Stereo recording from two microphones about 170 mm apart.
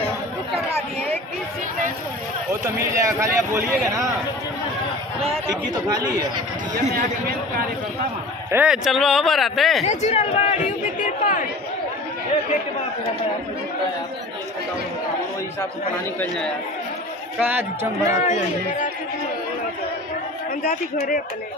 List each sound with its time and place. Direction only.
2.9 s speech: 15° right (ahead or behind)
5.5 s speech: 20° right (ahead or behind)
7.0 s speech: 60° right (ahead or behind)
8.5 s speech: 10° right (ahead or behind)
9.8 s speech: 40° left (ahead or behind)
11.0 s speech: 50° left (ahead or behind)
17.4 s speech: 10° right (ahead or behind)
18.3 s speech: 50° left (ahead or behind)
20.6 s a man's voice: 60° left (ahead or behind)